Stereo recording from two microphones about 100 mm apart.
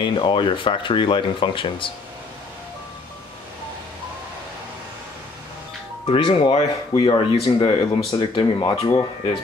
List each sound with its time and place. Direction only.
0.0 s speech: 55° left (ahead or behind)
6.0 s speech: 60° left (ahead or behind)
7.0 s speech: 55° left (ahead or behind)